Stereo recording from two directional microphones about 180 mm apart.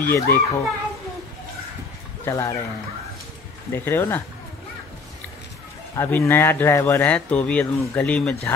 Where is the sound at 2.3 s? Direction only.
15° left (ahead or behind).